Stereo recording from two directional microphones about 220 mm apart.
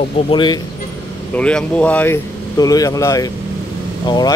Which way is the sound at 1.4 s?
5° left (ahead or behind).